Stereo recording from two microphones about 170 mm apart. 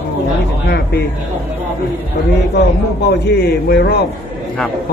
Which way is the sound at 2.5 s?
80° left.